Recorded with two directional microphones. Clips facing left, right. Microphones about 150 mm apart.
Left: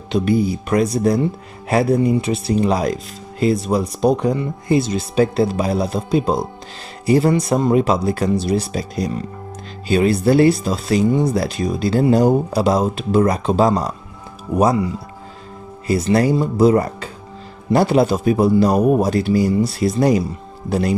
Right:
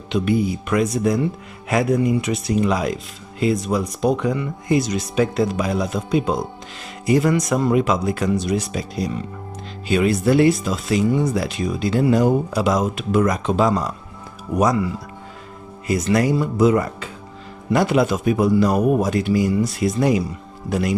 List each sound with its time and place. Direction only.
0.1 s speech: 35° left (ahead or behind)
15.9 s speech: 30° left (ahead or behind)